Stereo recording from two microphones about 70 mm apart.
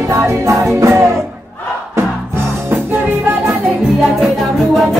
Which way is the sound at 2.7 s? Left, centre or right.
Right.